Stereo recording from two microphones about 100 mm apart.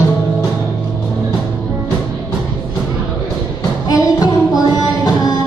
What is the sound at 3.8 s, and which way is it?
Music, 40° left (ahead or behind).